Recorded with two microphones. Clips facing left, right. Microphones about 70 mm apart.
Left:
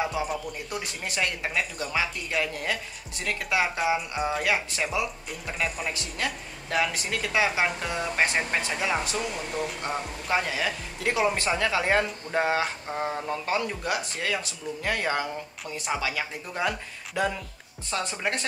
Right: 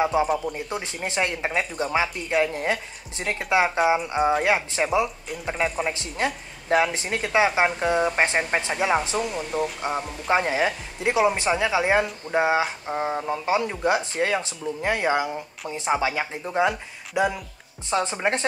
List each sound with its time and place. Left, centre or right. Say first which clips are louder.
0.0 s speech: right 7 dB; right